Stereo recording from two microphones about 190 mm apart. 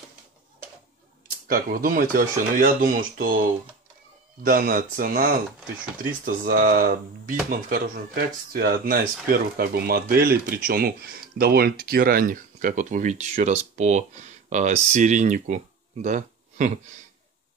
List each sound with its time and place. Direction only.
1.5 s speech: 50° right (ahead or behind)
4.4 s speech: 50° right (ahead or behind)